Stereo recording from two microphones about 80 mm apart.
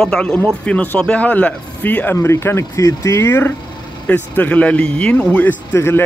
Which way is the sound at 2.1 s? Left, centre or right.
Left.